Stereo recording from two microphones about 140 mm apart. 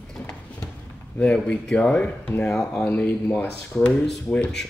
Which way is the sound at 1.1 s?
5° left (ahead or behind).